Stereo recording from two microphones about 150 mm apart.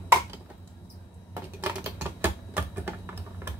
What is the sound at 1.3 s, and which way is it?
Typing, 15° right (ahead or behind).